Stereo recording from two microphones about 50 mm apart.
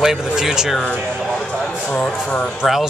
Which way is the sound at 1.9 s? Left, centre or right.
Left.